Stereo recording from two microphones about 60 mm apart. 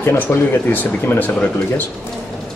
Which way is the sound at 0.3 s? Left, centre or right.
Left.